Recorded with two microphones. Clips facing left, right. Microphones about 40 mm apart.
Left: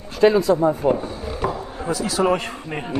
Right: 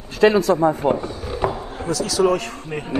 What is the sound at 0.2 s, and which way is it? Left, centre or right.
Speech, right.